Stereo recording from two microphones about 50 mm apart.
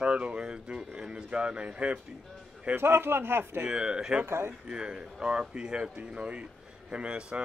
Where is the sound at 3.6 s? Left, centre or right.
Centre.